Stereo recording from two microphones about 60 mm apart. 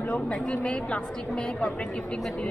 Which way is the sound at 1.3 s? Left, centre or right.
Centre.